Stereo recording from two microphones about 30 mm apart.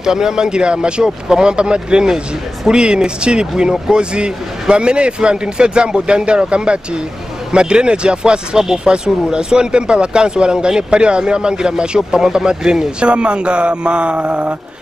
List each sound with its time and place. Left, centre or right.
0.0 s speech: right
13.0 s speech: right